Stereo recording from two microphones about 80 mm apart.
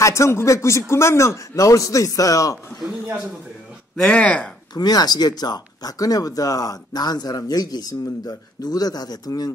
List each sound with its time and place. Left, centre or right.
0.0 s speech: left
3.9 s speech: centre
4.7 s speech: left